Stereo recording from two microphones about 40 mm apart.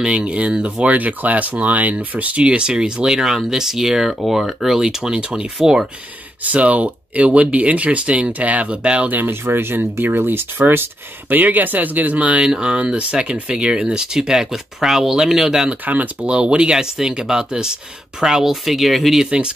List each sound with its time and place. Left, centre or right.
0.0 s speech: right
0.8 s speech: right; by 5.9 s centre
6.4 s speech: right
9.3 s speech: right
10.0 s speech: right
11.2 s speech: right
12.4 s speech: right
15.8 s speech: right
16.3 s speech: right
16.7 s speech: centre
19.2 s speech: right